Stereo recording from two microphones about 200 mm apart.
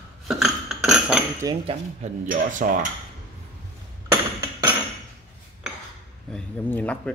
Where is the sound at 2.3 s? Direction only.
45° right (ahead or behind).